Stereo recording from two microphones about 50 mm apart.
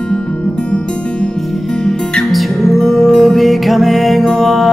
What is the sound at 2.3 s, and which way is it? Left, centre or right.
Music, centre.